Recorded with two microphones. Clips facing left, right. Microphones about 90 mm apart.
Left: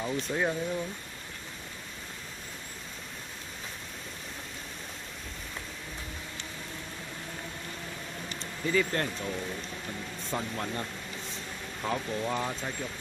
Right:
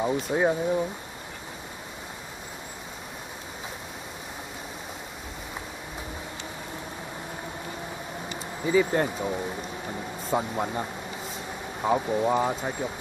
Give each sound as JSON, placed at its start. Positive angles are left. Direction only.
{"t": 0.0, "sound": "speech", "side_deg": -25}
{"t": 8.4, "sound": "speech", "side_deg": -15}